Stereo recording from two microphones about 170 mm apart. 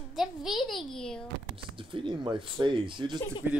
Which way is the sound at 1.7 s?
30° right (ahead or behind).